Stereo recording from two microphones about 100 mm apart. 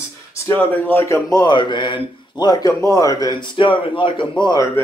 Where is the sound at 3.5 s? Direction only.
55° left (ahead or behind).